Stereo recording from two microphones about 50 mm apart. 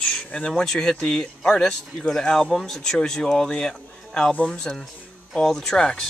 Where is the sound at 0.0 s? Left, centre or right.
Centre.